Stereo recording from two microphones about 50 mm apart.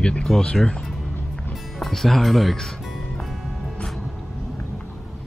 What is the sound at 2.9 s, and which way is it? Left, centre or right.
Music, centre.